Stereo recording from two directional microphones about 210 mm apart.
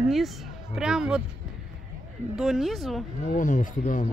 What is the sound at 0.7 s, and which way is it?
Speech, 5° right (ahead or behind).